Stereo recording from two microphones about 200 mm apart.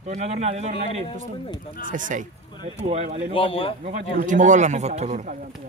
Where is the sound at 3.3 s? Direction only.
25° left (ahead or behind).